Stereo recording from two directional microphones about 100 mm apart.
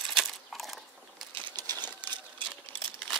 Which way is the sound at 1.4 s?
45° right (ahead or behind).